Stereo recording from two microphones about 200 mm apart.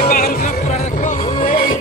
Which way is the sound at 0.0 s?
45° left (ahead or behind).